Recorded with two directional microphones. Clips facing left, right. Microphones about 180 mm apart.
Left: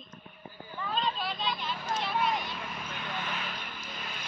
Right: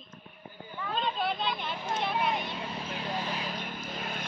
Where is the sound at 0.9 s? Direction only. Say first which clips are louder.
Right 3 dB; 55° right (ahead or behind).